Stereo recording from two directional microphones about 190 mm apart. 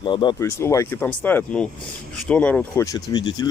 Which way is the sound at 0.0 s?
25° left (ahead or behind).